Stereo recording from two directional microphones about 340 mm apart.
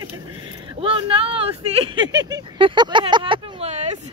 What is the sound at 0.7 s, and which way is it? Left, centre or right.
Speech, centre.